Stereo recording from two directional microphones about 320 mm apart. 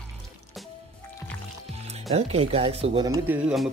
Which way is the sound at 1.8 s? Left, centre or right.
Centre.